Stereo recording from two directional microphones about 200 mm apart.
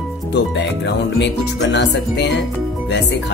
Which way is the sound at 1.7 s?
60° left (ahead or behind).